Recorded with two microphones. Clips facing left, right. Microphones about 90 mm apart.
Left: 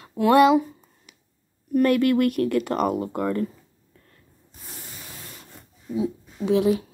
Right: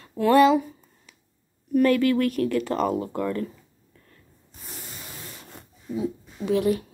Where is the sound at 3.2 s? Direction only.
30° left (ahead or behind).